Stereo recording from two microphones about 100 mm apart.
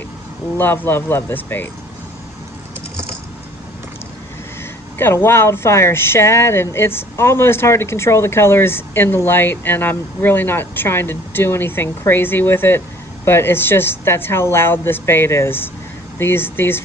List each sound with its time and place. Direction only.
0.6 s speech: 20° left (ahead or behind)
4.9 s speech: 25° left (ahead or behind)